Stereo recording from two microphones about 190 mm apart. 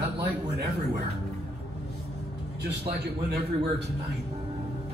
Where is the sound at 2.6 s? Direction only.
60° right (ahead or behind).